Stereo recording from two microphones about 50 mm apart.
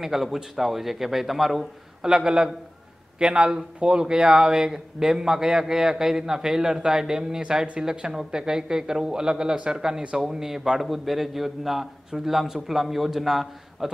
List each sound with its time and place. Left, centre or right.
0.0 s a man's voice: centre
2.0 s a man's voice: centre